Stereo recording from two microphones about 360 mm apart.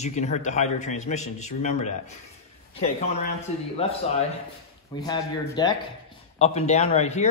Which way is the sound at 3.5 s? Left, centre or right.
Centre.